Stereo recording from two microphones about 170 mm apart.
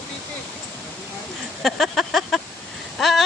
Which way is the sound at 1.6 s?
Centre (ahead or behind).